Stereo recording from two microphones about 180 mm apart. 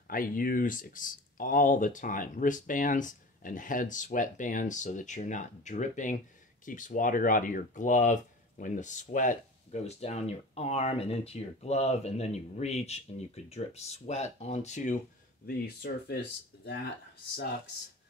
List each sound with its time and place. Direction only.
0.1 s speech: 50° left (ahead or behind)
15.4 s speech: 55° left (ahead or behind)